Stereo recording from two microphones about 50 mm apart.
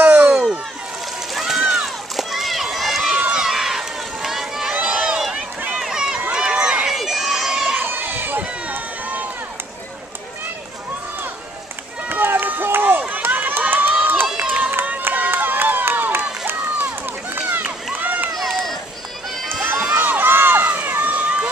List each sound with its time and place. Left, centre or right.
0.0 s a sound: right
1.4 s a sound: centre
3.3 s run: centre
6.9 s crowd: centre
7.8 s run: right
12.1 s run: right
14.4 s run: right
14.9 s run: right
18.0 s run: right
19.6 s crowd: right
20.0 s run: right
21.1 s run: right